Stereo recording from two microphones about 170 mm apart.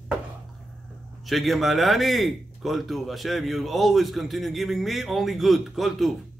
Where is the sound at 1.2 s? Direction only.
Centre (ahead or behind).